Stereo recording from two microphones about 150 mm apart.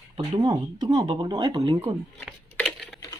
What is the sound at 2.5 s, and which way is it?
Typing, 5° left (ahead or behind).